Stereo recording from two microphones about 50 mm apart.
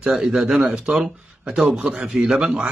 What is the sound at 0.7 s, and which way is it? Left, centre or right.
Speech, right.